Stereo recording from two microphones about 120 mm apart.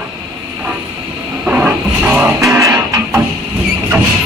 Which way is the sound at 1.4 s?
10° right (ahead or behind).